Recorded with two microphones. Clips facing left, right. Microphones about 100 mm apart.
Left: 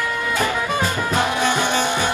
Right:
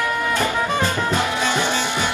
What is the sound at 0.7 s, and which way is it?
Music, 20° left (ahead or behind).